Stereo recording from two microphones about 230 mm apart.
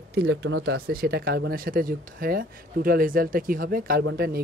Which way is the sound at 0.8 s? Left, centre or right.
Right.